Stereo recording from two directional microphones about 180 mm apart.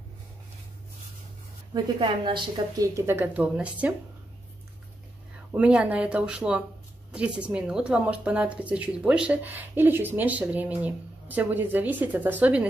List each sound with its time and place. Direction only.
1.7 s speech: 30° right (ahead or behind)
3.1 s speech: 10° right (ahead or behind)
5.5 s speech: 5° right (ahead or behind)